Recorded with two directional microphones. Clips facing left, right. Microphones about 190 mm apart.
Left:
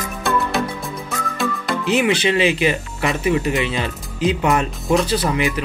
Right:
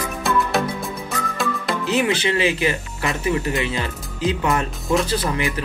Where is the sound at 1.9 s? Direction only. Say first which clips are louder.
Left 3 dB; 20° left (ahead or behind).